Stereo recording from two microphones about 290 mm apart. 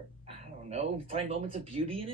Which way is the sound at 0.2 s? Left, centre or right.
Right.